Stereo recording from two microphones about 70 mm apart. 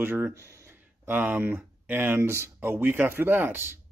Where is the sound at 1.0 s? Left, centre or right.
Right.